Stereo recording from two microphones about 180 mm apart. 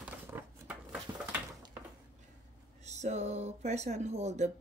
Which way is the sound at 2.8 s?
40° right (ahead or behind).